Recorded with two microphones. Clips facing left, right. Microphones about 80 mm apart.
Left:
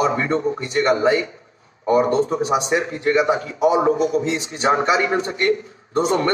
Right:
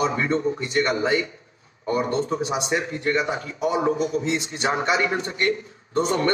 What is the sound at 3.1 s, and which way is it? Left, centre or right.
A man's voice, left.